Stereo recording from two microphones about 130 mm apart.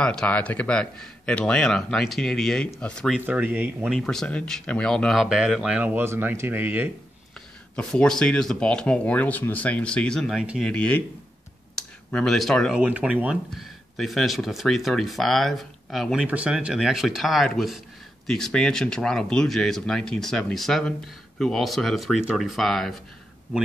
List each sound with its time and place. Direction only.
0.0 s speech: 5° left (ahead or behind)
3.1 s speech: 10° right (ahead or behind)
3.9 s speech: 5° left (ahead or behind); by 6.9 s 15° right (ahead or behind)
7.7 s speech: 5° left (ahead or behind)
11.7 s a sound: 5° left (ahead or behind)
12.7 s speech: 10° right (ahead or behind)